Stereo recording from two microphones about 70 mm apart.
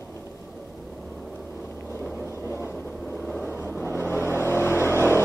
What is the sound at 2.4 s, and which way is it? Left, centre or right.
Vehicle, left.